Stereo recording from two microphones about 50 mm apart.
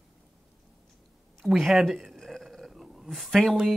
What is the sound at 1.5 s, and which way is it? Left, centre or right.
Speech, centre.